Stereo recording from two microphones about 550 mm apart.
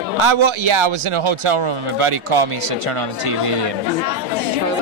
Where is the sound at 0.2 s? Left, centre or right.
Right.